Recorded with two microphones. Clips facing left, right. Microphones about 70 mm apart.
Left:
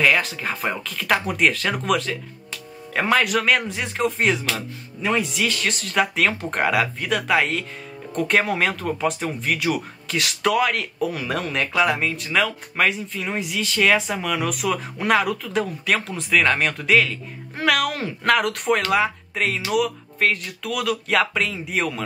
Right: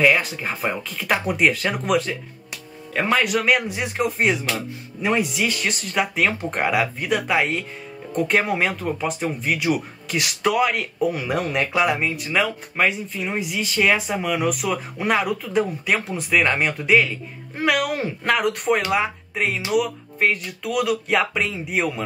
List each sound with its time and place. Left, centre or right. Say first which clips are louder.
0.0 s speech: right 1 dB; centre